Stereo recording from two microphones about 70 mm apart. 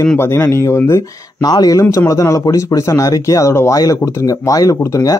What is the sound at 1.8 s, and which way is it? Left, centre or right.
Speech, left.